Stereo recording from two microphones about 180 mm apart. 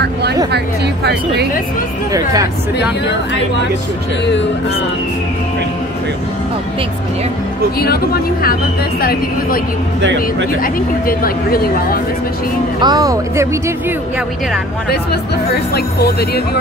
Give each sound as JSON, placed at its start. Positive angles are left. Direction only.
{"t": 0.0, "sound": "a woman's voice", "side_deg": -65}
{"t": 7.8, "sound": "speech", "side_deg": 60}
{"t": 10.6, "sound": "speech", "side_deg": 55}
{"t": 12.8, "sound": "speech", "side_deg": -20}
{"t": 15.5, "sound": "speech", "side_deg": 60}